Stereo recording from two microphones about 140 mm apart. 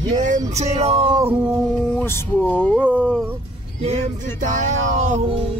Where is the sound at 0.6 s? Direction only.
50° right (ahead or behind).